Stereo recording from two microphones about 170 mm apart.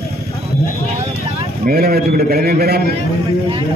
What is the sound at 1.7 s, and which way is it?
A man's voice, 65° right (ahead or behind).